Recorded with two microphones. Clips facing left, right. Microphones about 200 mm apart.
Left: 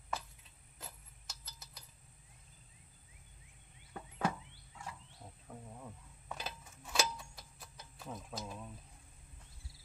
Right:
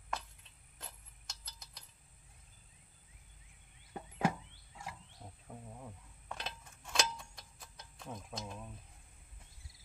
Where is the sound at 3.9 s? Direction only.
20° right (ahead or behind).